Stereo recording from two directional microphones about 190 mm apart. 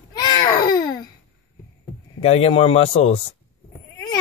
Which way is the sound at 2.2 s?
30° left (ahead or behind).